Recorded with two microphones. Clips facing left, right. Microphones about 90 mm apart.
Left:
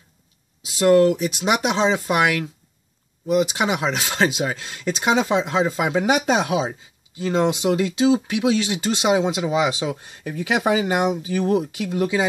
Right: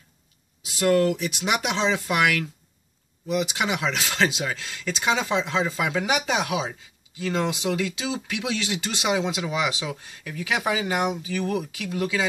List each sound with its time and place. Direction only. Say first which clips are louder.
0.7 s speech: left 5 dB; 25° left (ahead or behind)
3.5 s speech: left 4 dB; 30° left (ahead or behind)